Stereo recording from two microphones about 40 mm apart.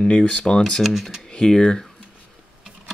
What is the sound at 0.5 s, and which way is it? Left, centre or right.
Speech, centre.